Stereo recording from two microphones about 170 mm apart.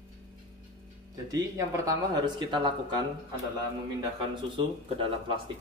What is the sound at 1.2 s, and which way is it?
Speech, 20° right (ahead or behind).